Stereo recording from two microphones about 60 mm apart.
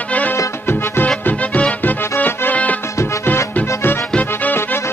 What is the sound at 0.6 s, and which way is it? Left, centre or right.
Music, left.